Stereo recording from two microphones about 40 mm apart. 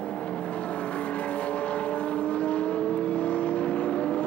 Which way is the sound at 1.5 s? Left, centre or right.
Left.